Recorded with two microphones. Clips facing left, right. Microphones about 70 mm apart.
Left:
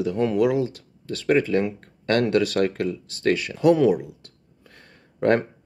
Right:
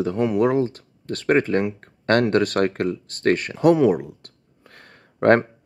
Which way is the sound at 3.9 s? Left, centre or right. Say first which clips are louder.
Right 1 dB; right.